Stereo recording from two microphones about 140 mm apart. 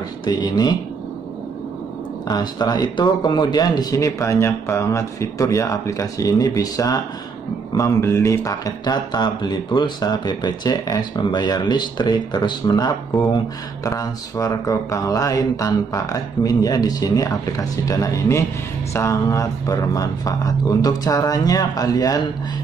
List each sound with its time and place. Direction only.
0.2 s speech: 30° left (ahead or behind)
2.2 s speech: 30° left (ahead or behind)